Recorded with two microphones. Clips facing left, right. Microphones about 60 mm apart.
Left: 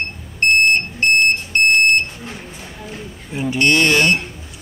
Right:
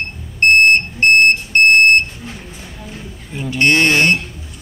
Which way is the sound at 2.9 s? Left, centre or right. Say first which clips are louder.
Left 2 dB; centre.